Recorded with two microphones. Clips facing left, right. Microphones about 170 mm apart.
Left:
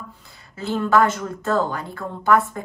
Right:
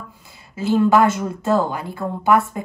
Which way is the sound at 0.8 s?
15° right (ahead or behind).